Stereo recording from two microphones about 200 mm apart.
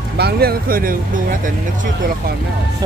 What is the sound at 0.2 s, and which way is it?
Speech, 50° right (ahead or behind).